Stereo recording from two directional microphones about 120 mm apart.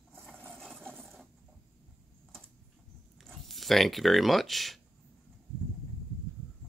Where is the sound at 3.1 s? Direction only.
Centre (ahead or behind).